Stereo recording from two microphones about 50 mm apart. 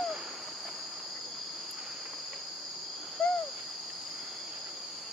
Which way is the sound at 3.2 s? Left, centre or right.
Left.